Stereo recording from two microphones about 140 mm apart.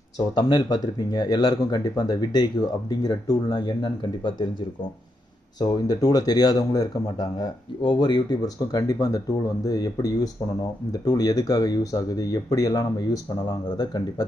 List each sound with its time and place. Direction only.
0.3 s speech: 35° left (ahead or behind)
5.6 s speech: 30° left (ahead or behind)